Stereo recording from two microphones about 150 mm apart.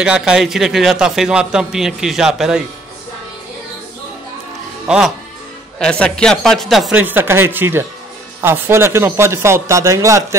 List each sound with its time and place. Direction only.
0.0 s a man's voice: 5° right (ahead or behind)
4.8 s speech: 5° right (ahead or behind)
5.8 s a man's voice: 5° left (ahead or behind)
7.0 s speech: 15° right (ahead or behind)